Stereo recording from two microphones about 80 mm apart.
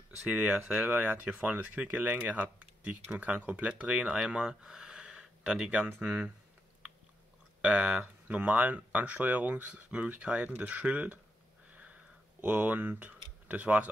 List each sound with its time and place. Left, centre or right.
0.3 s speech: centre
5.9 s speech: centre
7.6 s speech: centre
8.0 s speech: right
11.7 s a sound: right
13.5 s speech: centre